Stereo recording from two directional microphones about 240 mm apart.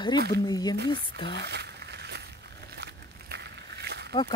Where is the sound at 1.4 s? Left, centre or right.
Right.